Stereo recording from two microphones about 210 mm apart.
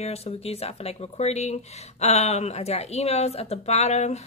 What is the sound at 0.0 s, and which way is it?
Speech, 30° left (ahead or behind).